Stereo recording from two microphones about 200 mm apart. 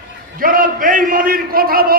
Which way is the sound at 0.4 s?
45° right (ahead or behind).